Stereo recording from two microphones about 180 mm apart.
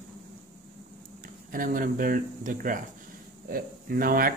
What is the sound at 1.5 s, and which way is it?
Speech, 50° right (ahead or behind).